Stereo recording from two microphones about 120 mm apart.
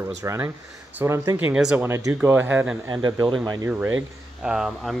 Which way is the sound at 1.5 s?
5° right (ahead or behind).